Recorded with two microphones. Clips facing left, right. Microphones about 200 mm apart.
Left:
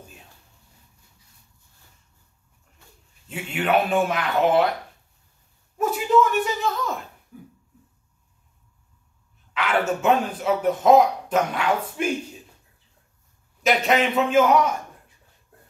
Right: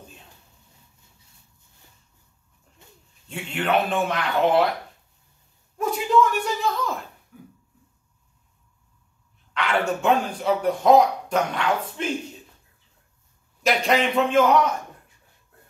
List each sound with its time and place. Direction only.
2.8 s bird: 20° right (ahead or behind)
3.3 s a man's voice: 5° left (ahead or behind)
5.8 s a man's voice: 5° left (ahead or behind)
9.5 s a man's voice: 5° left (ahead or behind)
13.6 s a man's voice: centre (ahead or behind)